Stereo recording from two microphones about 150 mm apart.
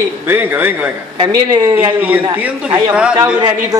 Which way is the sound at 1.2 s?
25° right (ahead or behind).